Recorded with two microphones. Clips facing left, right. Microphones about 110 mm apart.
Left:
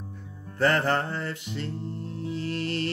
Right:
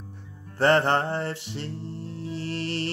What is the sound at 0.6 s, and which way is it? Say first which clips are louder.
Music: right 3 dB; 30° right (ahead or behind).